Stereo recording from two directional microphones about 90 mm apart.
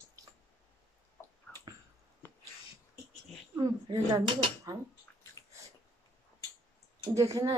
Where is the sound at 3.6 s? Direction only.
45° right (ahead or behind).